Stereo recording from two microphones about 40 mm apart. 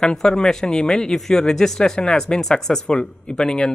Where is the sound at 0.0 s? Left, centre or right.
Centre.